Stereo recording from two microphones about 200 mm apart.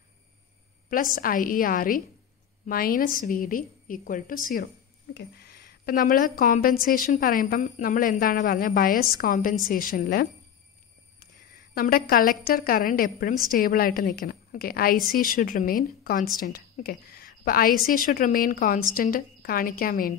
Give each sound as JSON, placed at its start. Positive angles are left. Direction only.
{"t": 0.8, "sound": "a woman's voice", "side_deg": 45}
{"t": 5.1, "sound": "a woman's voice", "side_deg": 55}